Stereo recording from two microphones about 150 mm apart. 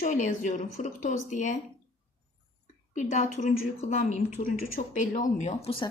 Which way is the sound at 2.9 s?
55° left (ahead or behind).